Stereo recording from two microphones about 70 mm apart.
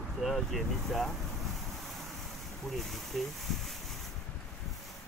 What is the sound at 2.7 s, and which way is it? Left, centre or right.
Speech, centre.